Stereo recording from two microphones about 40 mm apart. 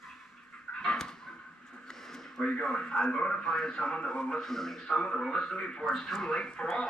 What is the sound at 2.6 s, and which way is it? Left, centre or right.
Speech, left.